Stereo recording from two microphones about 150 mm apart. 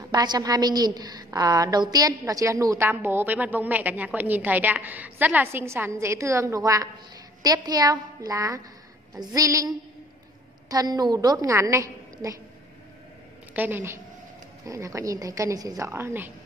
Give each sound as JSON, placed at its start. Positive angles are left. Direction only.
{"t": 0.1, "sound": "a woman's voice", "side_deg": -25}
{"t": 13.5, "sound": "a woman's voice", "side_deg": -10}